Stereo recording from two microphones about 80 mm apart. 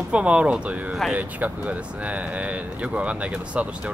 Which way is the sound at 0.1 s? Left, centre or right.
Centre.